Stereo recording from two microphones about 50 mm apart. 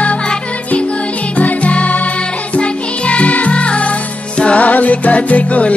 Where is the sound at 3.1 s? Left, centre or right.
Left.